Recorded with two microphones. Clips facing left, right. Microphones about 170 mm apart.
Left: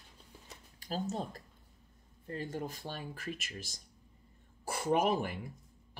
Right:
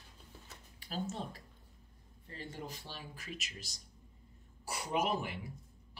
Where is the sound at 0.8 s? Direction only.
40° left (ahead or behind).